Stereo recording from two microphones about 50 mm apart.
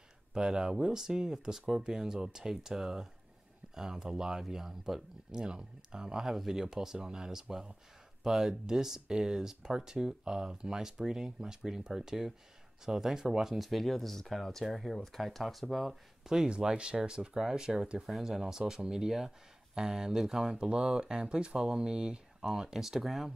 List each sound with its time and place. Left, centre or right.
0.3 s speech: centre
6.2 s speech: centre
18.0 s speech: centre